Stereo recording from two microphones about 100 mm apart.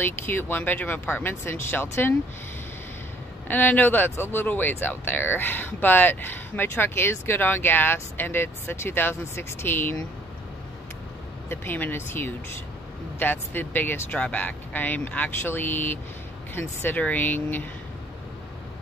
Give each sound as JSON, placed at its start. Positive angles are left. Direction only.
{"t": 0.0, "sound": "speech", "side_deg": 20}
{"t": 3.4, "sound": "speech", "side_deg": 15}
{"t": 11.4, "sound": "speech", "side_deg": 20}